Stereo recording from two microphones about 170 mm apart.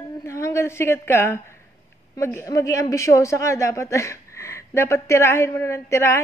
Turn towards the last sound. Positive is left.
turn(degrees=15)  # may be behind; listen again after turning